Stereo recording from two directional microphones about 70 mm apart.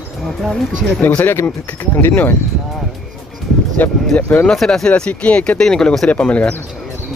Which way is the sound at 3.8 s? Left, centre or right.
Left.